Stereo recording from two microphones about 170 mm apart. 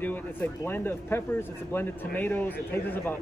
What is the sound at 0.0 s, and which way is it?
A man's voice, 10° left (ahead or behind).